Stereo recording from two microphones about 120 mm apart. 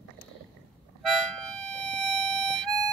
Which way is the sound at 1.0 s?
Centre (ahead or behind).